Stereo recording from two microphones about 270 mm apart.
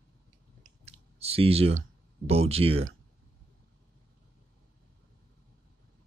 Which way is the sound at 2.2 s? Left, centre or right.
Right.